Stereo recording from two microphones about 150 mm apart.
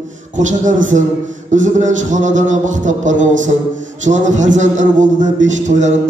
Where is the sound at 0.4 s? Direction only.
55° right (ahead or behind).